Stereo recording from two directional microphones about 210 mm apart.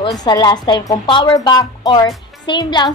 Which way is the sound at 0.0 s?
20° left (ahead or behind).